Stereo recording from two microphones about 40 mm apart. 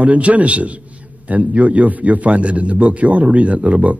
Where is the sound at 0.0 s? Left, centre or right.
Right.